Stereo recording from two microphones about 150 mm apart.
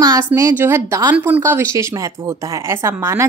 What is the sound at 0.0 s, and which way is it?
A woman's voice, 20° right (ahead or behind).